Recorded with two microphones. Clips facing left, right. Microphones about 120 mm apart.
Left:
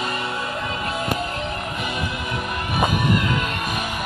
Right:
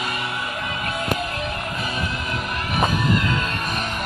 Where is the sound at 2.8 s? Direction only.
15° left (ahead or behind).